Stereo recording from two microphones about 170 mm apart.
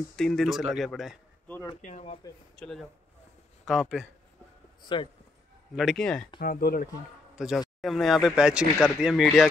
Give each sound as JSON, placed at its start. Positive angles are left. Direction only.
{"t": 0.1, "sound": "speech", "side_deg": 5}
{"t": 1.5, "sound": "speech", "side_deg": 20}
{"t": 1.8, "sound": "speech", "side_deg": 45}
{"t": 2.5, "sound": "speech", "side_deg": 5}
{"t": 4.8, "sound": "speech", "side_deg": 30}
{"t": 5.8, "sound": "speech", "side_deg": 0}
{"t": 6.4, "sound": "speech", "side_deg": 60}
{"t": 7.3, "sound": "speech", "side_deg": -5}